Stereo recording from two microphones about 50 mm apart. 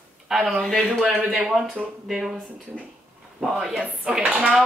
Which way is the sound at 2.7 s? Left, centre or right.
Left.